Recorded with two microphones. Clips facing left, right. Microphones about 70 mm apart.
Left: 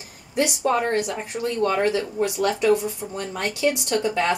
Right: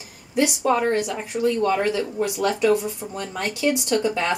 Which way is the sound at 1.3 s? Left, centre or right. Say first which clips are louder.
Right 6 dB; centre.